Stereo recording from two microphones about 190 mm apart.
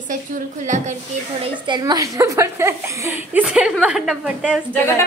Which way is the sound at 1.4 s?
25° right (ahead or behind).